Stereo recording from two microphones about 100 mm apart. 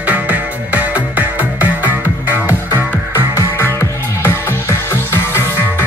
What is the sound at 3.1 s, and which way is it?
Music, 25° left (ahead or behind).